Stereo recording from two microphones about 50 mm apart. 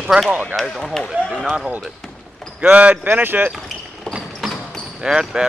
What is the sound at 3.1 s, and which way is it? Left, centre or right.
Speech, right.